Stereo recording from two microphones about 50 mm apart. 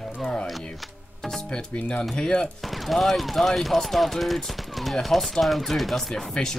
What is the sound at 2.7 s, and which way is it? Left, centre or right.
Speech, centre.